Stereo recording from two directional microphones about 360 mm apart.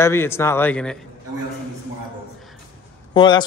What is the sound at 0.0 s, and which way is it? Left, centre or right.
Speech, centre.